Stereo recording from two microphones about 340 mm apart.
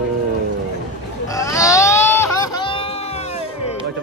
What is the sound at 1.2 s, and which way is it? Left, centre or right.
Baby cry, centre.